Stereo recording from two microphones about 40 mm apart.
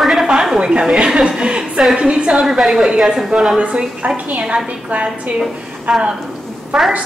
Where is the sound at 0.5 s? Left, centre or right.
Right.